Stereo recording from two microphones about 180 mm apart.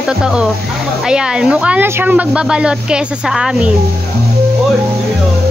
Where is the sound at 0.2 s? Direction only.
5° right (ahead or behind).